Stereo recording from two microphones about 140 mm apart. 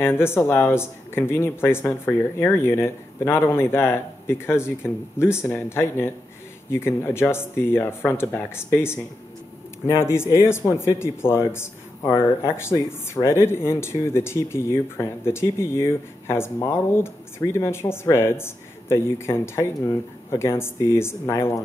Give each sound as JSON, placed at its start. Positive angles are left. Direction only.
{"t": 0.0, "sound": "a man's voice", "side_deg": 15}